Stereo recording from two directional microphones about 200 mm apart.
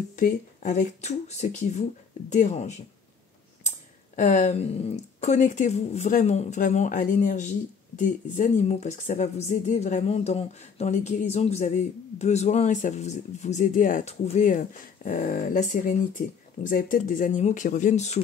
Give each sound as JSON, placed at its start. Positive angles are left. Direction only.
{"t": 0.1, "sound": "speech", "side_deg": 40}
{"t": 4.1, "sound": "speech", "side_deg": 40}